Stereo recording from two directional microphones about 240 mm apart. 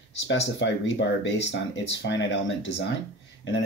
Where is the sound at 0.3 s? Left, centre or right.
Left.